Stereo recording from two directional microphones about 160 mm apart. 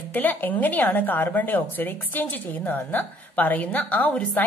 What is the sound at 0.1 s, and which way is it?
A woman's voice, 10° left (ahead or behind).